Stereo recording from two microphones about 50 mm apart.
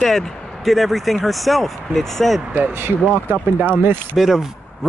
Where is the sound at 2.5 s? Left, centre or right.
Right.